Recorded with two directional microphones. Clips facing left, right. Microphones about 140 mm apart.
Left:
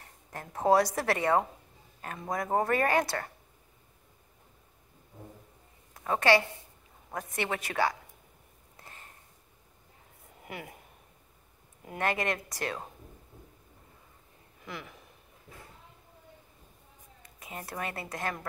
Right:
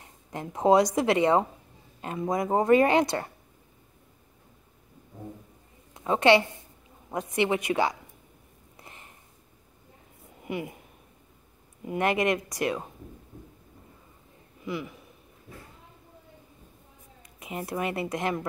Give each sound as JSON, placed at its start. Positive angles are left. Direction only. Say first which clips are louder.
{"t": 0.0, "sound": "speech", "louder": "right 7 dB", "side_deg": -20}
{"t": 5.9, "sound": "a woman's voice", "louder": "right 4 dB", "side_deg": -20}
{"t": 8.8, "sound": "a sound", "louder": "right 2 dB", "side_deg": -15}
{"t": 10.4, "sound": "a woman's voice", "louder": "right 9 dB", "side_deg": -5}
{"t": 12.0, "sound": "speech", "louder": "right 6 dB", "side_deg": -15}
{"t": 14.6, "sound": "speech", "louder": "right 9 dB", "side_deg": -5}
{"t": 17.4, "sound": "speech", "louder": "right 7 dB", "side_deg": -15}